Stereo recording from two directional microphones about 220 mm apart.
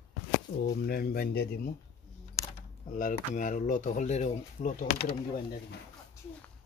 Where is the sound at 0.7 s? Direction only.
45° left (ahead or behind).